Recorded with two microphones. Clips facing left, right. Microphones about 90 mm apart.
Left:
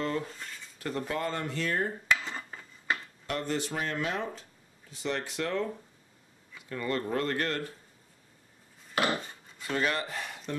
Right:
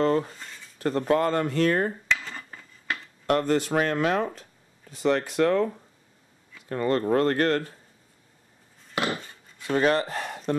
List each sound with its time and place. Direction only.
0.0 s speech: 40° right (ahead or behind)
2.2 s dishes: 15° left (ahead or behind)
3.3 s speech: 55° right (ahead or behind)
6.7 s speech: 45° right (ahead or behind)
9.6 s a sound: 30° right (ahead or behind)